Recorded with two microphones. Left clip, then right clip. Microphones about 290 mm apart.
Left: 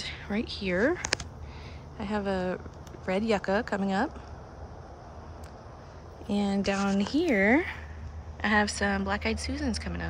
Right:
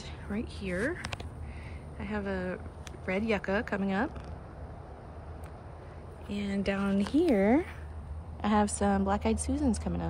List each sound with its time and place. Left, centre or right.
0.0 s a woman's voice: centre
6.2 s a woman's voice: centre